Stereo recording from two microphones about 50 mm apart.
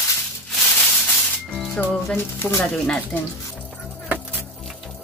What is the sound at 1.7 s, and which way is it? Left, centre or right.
Music, left.